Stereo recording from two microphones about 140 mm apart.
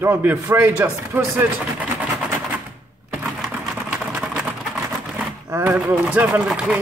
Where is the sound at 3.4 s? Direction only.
10° right (ahead or behind).